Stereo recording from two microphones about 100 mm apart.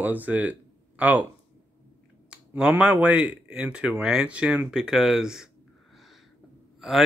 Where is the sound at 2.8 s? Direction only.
10° right (ahead or behind).